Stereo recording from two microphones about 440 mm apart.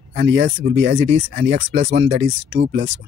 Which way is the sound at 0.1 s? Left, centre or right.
Right.